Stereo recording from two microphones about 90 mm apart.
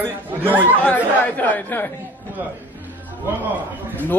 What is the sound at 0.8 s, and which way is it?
Speech, 20° left (ahead or behind).